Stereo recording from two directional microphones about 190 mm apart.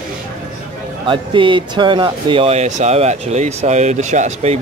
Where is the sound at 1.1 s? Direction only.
25° right (ahead or behind).